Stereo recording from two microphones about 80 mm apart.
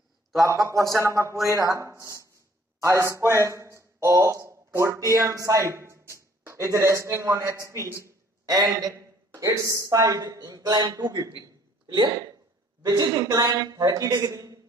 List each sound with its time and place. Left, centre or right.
0.9 s speech: right